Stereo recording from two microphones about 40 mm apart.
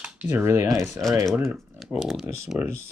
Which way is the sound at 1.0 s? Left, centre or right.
Centre.